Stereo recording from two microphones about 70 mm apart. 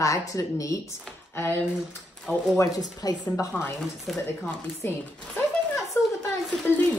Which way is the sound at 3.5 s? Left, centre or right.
Left.